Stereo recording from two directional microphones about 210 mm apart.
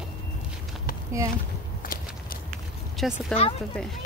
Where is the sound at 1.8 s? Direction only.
40° left (ahead or behind).